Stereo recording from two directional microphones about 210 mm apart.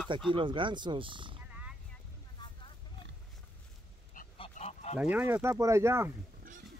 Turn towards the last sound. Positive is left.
turn(degrees=-15)  # may be behind; listen again after turning